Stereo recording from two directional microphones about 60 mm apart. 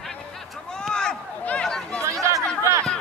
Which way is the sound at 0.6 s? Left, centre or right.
Centre.